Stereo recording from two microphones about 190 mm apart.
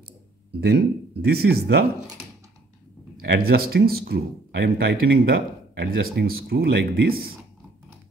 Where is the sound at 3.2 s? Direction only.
55° right (ahead or behind).